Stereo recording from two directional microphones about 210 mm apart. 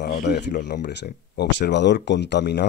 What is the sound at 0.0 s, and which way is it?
Speech, 50° left (ahead or behind).